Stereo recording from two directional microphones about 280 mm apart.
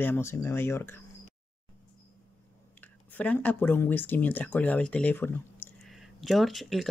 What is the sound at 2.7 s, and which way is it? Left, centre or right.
Speech, centre.